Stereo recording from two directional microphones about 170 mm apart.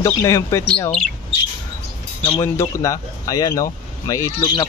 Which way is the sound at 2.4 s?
20° left (ahead or behind).